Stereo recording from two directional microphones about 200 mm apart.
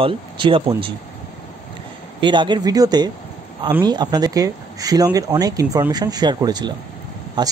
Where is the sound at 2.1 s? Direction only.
25° right (ahead or behind).